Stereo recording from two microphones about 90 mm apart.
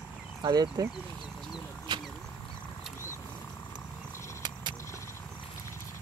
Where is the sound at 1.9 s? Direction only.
60° right (ahead or behind).